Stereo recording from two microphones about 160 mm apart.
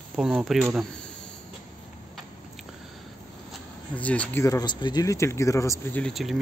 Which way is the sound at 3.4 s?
10° left (ahead or behind).